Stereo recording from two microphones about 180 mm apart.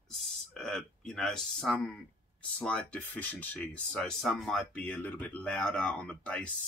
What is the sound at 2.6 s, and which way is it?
Speech, 5° left (ahead or behind).